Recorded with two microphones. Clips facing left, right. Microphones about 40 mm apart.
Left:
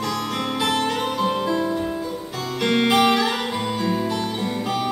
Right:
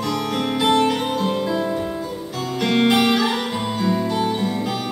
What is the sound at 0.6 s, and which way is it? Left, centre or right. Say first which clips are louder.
Music: right 6 dB; centre.